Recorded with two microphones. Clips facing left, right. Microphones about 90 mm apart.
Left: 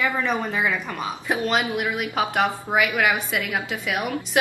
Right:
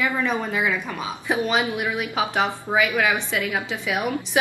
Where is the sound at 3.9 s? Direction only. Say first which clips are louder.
Right 2 dB; 20° right (ahead or behind).